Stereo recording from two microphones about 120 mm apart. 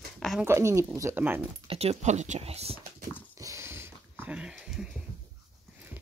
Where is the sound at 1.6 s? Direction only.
55° right (ahead or behind).